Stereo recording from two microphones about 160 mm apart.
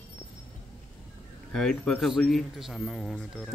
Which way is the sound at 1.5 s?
5° left (ahead or behind).